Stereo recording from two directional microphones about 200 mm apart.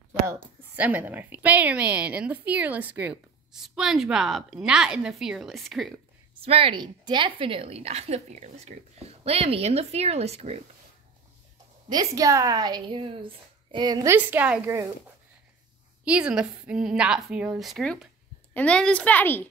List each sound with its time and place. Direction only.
0.3 s a woman's voice: 10° right (ahead or behind)
6.4 s a woman's voice: 30° right (ahead or behind)
11.9 s a woman's voice: 20° right (ahead or behind)
16.0 s a woman's voice: 5° right (ahead or behind); by 19.4 s 10° left (ahead or behind)